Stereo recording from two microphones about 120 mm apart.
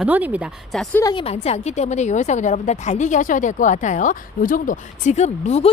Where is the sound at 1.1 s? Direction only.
60° left (ahead or behind).